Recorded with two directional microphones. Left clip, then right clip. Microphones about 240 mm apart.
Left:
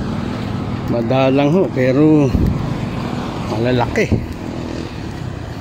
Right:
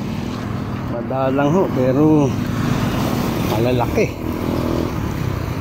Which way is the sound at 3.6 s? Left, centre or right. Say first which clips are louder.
Left 3 dB; centre.